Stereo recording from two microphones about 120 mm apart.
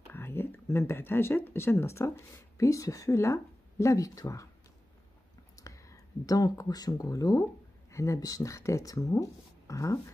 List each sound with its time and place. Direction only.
0.1 s speech: 20° left (ahead or behind)
5.6 s speech: 25° left (ahead or behind)